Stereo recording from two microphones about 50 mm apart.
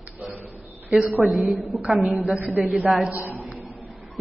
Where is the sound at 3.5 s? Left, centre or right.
Right.